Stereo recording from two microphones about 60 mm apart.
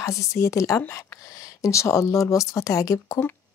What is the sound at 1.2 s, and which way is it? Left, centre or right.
A woman's voice, left.